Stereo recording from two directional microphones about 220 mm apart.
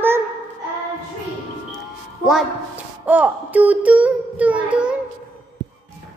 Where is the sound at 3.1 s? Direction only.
5° right (ahead or behind).